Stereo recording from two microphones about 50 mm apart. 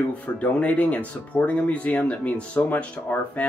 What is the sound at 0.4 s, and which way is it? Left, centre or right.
Speech, left.